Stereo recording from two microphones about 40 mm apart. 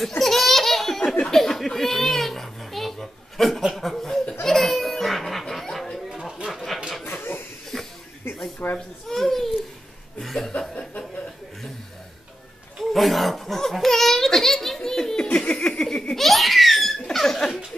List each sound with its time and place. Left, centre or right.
0.2 s baby laughter: centre
1.2 s a sound: centre
3.3 s chuckle: centre
4.5 s goat: centre
7.1 s chuckle: left
7.7 s a sound: centre
8.6 s baby cry: left
9.1 s a sound: centre
10.2 s chuckle: centre
12.7 s laughter: centre
15.3 s a sound: left
16.2 s laughter: centre